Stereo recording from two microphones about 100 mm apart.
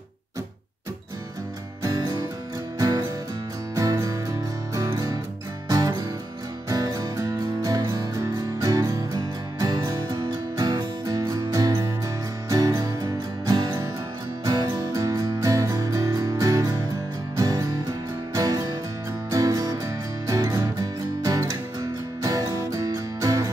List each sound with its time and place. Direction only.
1.8 s music: 35° right (ahead or behind)